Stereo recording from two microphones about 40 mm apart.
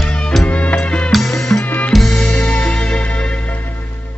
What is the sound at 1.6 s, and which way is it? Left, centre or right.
Music, left.